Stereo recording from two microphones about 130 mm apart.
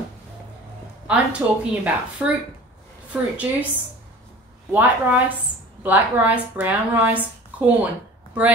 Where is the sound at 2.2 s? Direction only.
10° right (ahead or behind).